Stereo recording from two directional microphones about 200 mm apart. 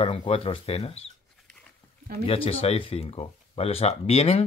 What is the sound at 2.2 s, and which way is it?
Speech, 30° left (ahead or behind).